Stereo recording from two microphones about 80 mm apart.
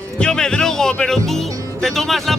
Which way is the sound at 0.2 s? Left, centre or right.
Centre.